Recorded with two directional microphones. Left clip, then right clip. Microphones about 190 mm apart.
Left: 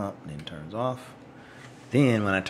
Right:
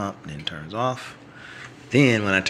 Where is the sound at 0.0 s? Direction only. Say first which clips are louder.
Right 5 dB; centre (ahead or behind).